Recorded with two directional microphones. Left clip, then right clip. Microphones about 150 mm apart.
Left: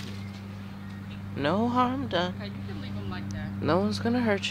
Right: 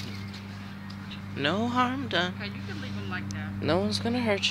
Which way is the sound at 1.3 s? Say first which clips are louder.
Left 1 dB; 25° left (ahead or behind).